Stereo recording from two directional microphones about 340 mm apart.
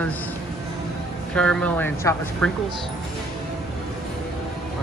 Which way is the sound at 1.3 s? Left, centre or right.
Centre.